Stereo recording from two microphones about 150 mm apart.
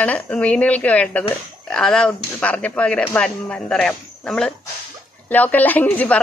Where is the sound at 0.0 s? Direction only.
10° left (ahead or behind).